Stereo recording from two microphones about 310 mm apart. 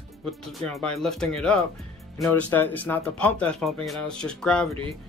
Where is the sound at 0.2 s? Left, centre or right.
Centre.